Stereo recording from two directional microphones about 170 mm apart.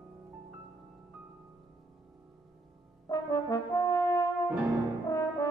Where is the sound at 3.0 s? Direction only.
20° left (ahead or behind).